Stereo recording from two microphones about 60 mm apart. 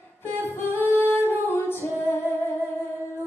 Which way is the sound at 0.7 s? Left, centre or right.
Left.